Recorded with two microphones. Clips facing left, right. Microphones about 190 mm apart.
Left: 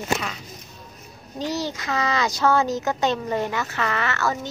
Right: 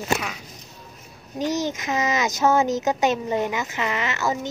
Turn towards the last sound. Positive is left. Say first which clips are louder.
# even
turn(degrees=-15)  # may be behind; listen again after turning